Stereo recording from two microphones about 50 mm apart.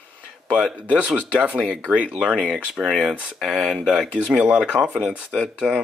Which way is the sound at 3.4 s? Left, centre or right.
Centre.